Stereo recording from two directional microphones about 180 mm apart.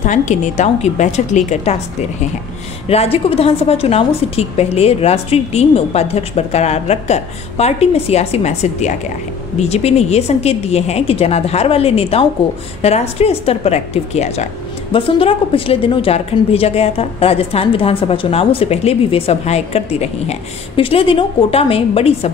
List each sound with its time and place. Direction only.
0.0 s a woman's voice: 40° left (ahead or behind)
2.9 s a woman's voice: 35° left (ahead or behind)